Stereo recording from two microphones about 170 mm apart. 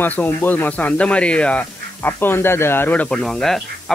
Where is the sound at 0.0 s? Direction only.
10° left (ahead or behind).